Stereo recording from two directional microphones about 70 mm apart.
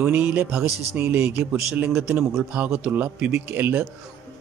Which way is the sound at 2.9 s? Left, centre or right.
Right.